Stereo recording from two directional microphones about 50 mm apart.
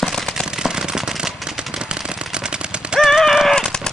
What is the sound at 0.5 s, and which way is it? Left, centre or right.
Firecracker, centre.